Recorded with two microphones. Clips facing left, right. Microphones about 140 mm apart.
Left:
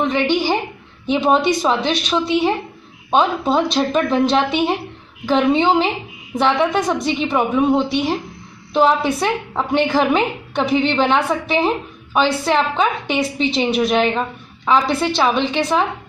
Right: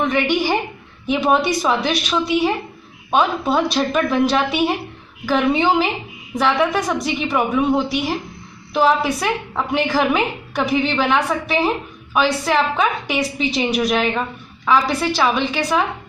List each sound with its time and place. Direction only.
1.1 s a woman's voice: 25° left (ahead or behind)